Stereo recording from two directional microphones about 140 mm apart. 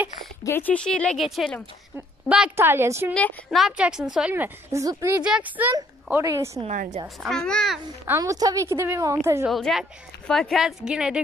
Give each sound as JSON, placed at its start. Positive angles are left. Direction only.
{"t": 0.4, "sound": "a woman's voice", "side_deg": 15}
{"t": 2.5, "sound": "a woman's voice", "side_deg": -15}
{"t": 3.4, "sound": "a woman's voice", "side_deg": -5}
{"t": 5.2, "sound": "a woman's voice", "side_deg": -10}
{"t": 6.7, "sound": "a woman's voice", "side_deg": -60}
{"t": 7.2, "sound": "a woman's voice", "side_deg": 5}
{"t": 8.0, "sound": "a woman's voice", "side_deg": -20}
{"t": 9.5, "sound": "a woman's voice", "side_deg": 0}